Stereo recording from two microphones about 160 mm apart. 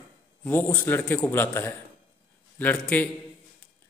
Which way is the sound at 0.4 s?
10° left (ahead or behind).